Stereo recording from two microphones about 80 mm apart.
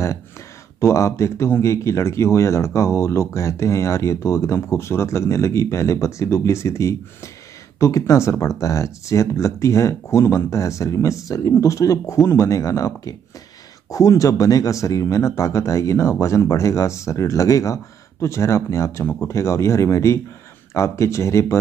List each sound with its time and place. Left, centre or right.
0.7 s speech: left